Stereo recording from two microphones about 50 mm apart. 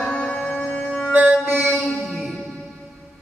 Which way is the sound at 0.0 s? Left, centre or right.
Centre.